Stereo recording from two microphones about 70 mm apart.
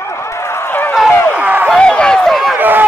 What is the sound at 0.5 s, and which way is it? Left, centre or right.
Run, left.